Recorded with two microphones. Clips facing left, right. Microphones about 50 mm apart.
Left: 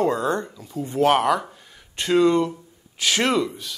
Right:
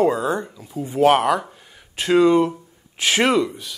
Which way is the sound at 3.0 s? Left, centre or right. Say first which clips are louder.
Right 3 dB; right.